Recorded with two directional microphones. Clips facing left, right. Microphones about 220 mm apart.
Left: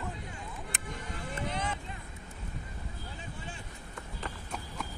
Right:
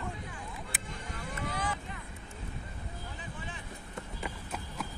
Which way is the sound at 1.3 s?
25° left (ahead or behind).